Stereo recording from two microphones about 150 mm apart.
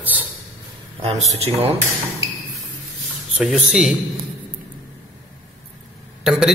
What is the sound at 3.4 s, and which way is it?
Speech, 5° right (ahead or behind).